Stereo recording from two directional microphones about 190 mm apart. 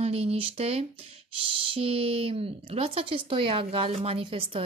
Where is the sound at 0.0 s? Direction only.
30° right (ahead or behind).